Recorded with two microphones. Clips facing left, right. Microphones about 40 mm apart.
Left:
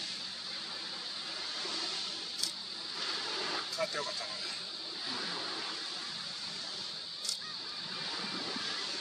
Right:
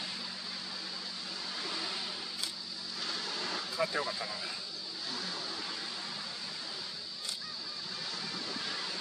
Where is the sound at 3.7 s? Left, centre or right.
Centre.